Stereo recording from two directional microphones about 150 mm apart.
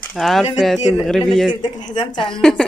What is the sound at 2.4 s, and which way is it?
Speech, 5° left (ahead or behind).